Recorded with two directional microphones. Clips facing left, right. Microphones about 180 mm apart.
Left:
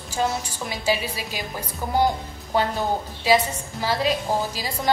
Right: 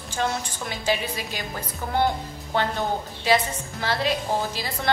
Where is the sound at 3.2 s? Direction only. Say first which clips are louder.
Left 2 dB; 10° left (ahead or behind).